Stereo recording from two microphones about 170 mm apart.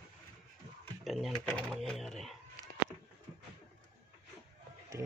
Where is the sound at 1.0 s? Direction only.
Centre (ahead or behind).